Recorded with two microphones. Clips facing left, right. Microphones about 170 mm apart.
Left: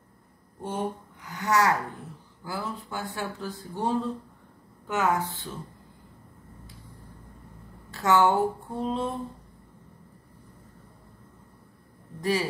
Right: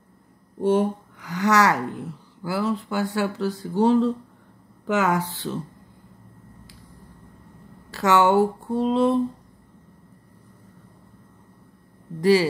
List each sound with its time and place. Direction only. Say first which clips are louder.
0.6 s speech: right 11 dB; 85° right
7.9 s speech: right 4 dB; 85° right
12.2 s speech: right 9 dB; 90° right